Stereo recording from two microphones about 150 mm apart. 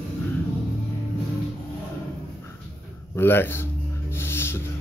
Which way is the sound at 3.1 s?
15° left (ahead or behind).